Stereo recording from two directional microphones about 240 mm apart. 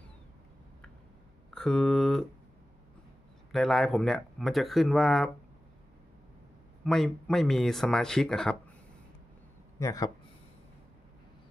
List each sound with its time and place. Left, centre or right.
1.5 s speech: centre
3.5 s speech: centre
6.8 s speech: centre
9.8 s speech: centre